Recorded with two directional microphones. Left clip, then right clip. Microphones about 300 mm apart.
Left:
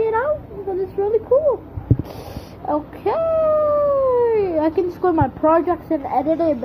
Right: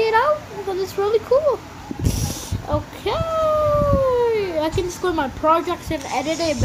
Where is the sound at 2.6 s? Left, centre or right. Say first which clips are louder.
Left 3 dB; centre.